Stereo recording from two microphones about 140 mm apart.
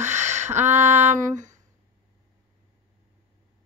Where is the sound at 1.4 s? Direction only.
60° right (ahead or behind).